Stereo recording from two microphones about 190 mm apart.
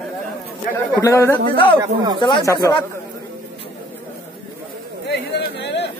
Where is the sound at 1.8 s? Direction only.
20° right (ahead or behind).